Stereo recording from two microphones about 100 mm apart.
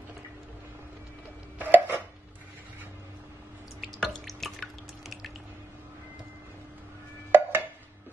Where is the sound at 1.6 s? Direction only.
15° right (ahead or behind).